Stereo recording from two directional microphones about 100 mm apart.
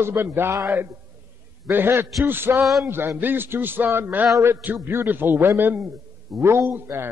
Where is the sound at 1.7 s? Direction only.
20° right (ahead or behind).